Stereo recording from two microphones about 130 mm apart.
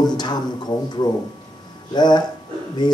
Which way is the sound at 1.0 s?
30° left (ahead or behind).